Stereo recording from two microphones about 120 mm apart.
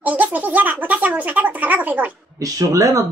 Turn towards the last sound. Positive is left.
turn(degrees=-25)  # may be behind; listen again after turning